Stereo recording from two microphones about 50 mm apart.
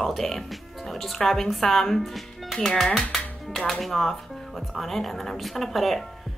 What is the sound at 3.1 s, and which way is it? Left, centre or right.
A woman's voice, centre.